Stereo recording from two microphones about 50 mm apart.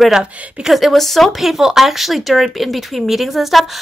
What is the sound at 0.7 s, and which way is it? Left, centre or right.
Speech, centre.